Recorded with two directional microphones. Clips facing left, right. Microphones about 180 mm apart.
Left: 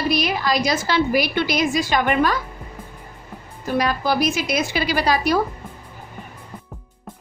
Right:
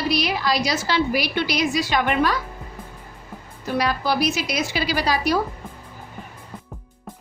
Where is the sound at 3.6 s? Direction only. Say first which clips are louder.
Left 2 dB; 45° left (ahead or behind).